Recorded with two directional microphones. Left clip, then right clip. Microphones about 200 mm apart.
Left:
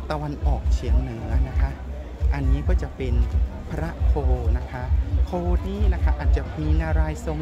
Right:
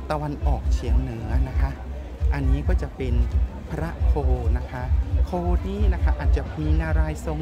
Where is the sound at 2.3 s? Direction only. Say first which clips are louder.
Right 1 dB; 15° right (ahead or behind).